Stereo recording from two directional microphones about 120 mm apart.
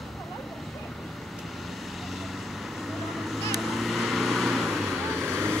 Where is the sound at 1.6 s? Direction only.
Centre (ahead or behind).